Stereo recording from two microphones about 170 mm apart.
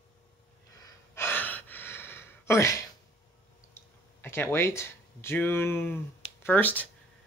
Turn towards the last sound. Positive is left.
turn(degrees=10)  # may be behind; listen again after turning